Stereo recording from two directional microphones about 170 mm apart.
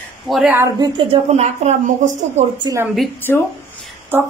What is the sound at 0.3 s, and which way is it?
Speech, 5° right (ahead or behind).